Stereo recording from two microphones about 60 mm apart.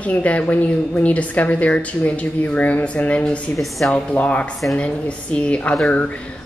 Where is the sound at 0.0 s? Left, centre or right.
Left.